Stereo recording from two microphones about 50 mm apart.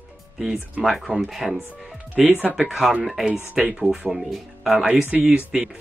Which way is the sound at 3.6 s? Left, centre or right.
Right.